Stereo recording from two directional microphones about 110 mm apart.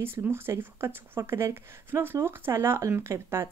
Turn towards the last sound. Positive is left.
turn(degrees=-25)  # may be behind; listen again after turning